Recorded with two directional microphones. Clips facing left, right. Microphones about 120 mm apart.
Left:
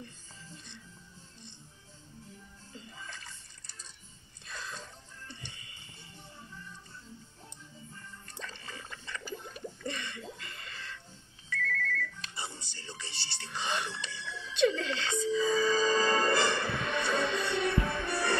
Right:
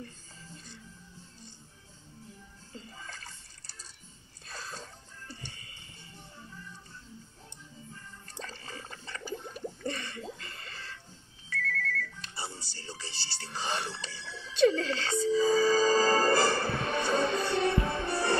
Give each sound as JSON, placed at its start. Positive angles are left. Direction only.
{"t": 3.1, "sound": "water", "side_deg": -40}
{"t": 4.5, "sound": "a sound", "side_deg": -35}
{"t": 5.3, "sound": "music", "side_deg": -35}
{"t": 8.4, "sound": "water", "side_deg": -35}
{"t": 9.8, "sound": "a sound", "side_deg": -35}
{"t": 11.5, "sound": "music", "side_deg": -40}